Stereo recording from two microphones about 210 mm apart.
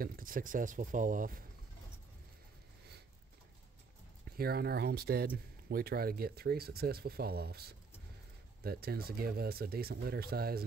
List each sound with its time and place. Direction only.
0.0 s speech: 45° right (ahead or behind)
4.4 s speech: 50° right (ahead or behind)